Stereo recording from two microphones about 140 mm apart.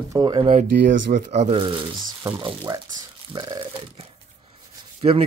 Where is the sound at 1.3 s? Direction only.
50° right (ahead or behind).